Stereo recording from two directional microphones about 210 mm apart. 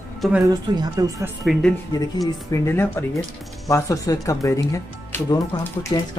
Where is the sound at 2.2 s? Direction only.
15° left (ahead or behind).